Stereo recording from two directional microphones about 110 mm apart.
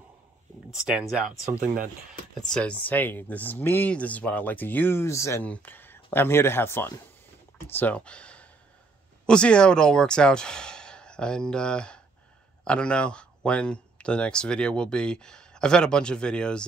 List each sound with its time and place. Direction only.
0.7 s speech: 10° right (ahead or behind)
2.3 s speech: 5° left (ahead or behind); by 5.4 s 25° left (ahead or behind)
5.4 s speech: 15° left (ahead or behind)